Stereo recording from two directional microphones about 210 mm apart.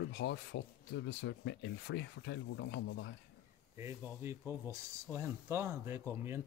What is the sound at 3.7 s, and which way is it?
Speech, 10° right (ahead or behind).